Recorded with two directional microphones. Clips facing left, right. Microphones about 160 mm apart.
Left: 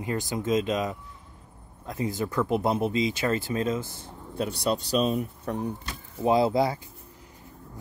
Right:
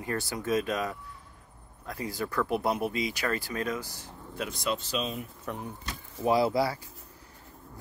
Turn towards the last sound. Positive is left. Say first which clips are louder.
# left 3 dB
turn(degrees=20)  # may be behind; listen again after turning